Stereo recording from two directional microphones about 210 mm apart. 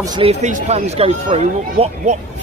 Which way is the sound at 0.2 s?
30° right (ahead or behind).